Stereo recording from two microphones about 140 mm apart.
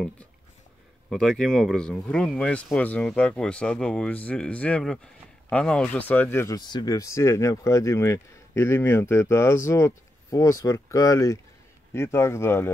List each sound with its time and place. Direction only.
1.1 s speech: 5° left (ahead or behind)